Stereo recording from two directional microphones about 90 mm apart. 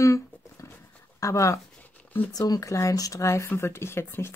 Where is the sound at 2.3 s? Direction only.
45° left (ahead or behind).